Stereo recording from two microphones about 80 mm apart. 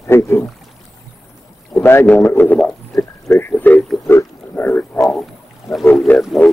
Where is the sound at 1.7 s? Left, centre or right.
Left.